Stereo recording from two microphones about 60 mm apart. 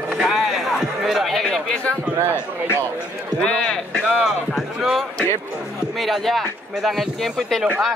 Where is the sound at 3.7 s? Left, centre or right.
Centre.